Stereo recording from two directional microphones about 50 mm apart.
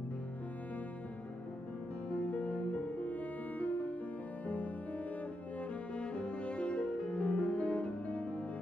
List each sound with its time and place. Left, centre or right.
2.1 s music: left
5.9 s cello: left